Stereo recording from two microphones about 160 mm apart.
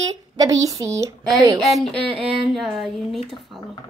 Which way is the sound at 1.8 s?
Centre (ahead or behind).